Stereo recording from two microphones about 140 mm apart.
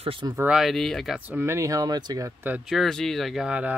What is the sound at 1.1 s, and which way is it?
Speech, 15° right (ahead or behind).